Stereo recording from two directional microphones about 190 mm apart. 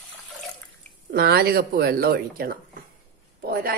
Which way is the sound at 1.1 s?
55° right (ahead or behind).